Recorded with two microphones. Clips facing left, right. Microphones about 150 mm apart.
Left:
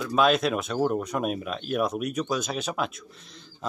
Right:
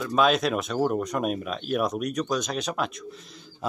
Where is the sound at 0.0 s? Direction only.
Centre (ahead or behind).